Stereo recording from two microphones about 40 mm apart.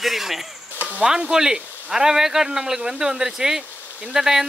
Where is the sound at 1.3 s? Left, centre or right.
Centre.